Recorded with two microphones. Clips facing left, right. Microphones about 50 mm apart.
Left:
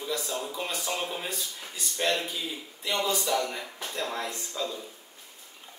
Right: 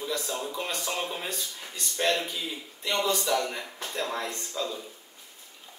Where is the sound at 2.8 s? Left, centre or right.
Centre.